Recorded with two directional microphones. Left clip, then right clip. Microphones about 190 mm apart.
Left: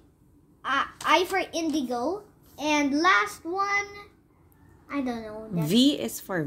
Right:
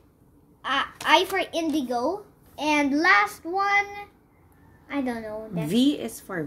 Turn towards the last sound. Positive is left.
turn(degrees=45)  # may be behind; listen again after turning